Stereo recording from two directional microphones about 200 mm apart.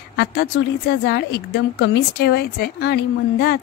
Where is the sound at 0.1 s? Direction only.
50° left (ahead or behind).